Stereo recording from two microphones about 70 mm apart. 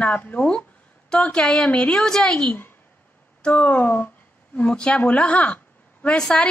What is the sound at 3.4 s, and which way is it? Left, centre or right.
A woman's voice, left.